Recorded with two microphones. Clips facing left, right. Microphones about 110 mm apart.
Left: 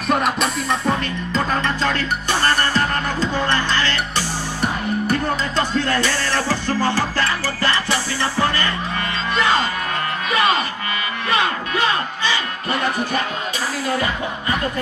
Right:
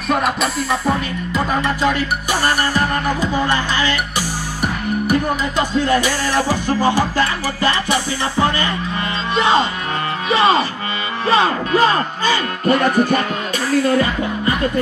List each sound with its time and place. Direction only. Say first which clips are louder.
0.1 s music: right 1 dB; centre (ahead or behind)
9.3 s speech: right 4 dB; 20° right (ahead or behind)
11.2 s music: right 6 dB; 30° right (ahead or behind)